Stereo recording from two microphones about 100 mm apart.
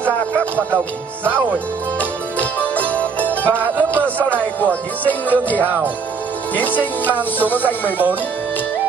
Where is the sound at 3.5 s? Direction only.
20° right (ahead or behind).